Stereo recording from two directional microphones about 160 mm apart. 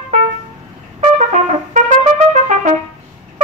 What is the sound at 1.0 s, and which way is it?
Trumpet, 50° right (ahead or behind).